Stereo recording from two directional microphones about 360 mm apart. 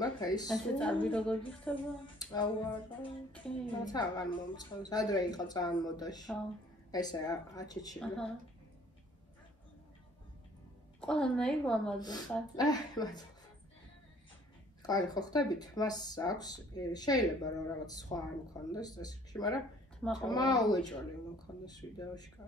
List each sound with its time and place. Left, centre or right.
0.0 s a woman's voice: centre
11.0 s a woman's voice: centre
14.8 s speech: centre